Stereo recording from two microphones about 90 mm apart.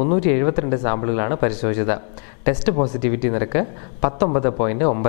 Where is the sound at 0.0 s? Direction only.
20° left (ahead or behind).